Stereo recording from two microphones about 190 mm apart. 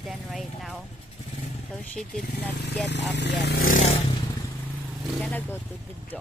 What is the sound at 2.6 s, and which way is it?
Speech, 65° left (ahead or behind).